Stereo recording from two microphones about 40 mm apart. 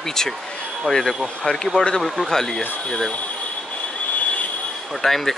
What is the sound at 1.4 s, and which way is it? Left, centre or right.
Speech, centre.